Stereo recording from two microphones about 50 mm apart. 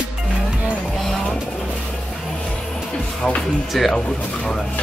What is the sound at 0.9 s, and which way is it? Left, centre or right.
Music, centre.